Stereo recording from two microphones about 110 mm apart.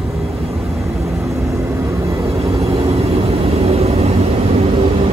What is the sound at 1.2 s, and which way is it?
Vehicle, 25° right (ahead or behind).